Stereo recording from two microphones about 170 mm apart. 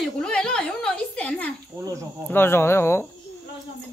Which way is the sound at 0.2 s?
5° left (ahead or behind).